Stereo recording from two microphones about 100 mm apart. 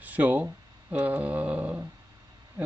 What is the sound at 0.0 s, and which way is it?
Speech, 15° right (ahead or behind).